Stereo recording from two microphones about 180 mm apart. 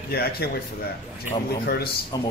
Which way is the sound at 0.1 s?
60° left (ahead or behind).